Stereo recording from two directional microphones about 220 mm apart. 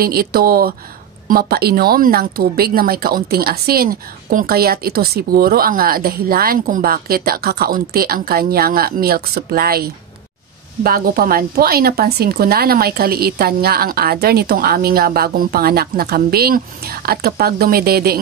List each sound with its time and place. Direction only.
0.0 s speech: 45° right (ahead or behind)